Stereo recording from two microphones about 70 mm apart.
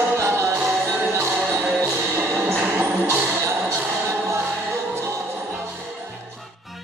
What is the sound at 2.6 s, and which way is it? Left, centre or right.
Music, right.